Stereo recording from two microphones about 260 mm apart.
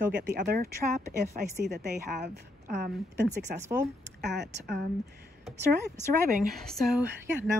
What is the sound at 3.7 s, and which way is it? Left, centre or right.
Speech, centre.